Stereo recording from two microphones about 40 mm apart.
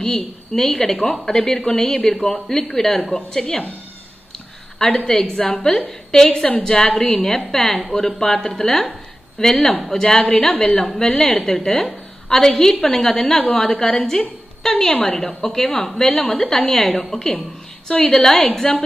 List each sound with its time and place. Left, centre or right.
0.0 s a woman's voice: centre
4.7 s a woman's voice: centre